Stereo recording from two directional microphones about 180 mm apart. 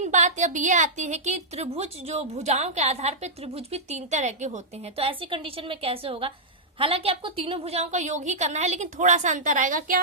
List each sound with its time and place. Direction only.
0.0 s a woman's voice: 40° right (ahead or behind)